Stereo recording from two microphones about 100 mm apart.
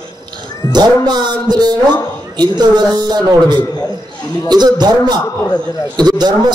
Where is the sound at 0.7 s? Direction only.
45° right (ahead or behind).